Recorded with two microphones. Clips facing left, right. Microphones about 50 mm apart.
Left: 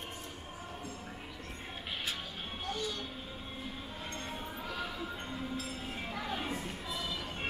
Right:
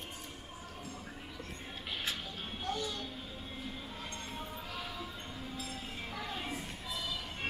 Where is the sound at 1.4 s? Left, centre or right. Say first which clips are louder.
Left 2 dB; centre.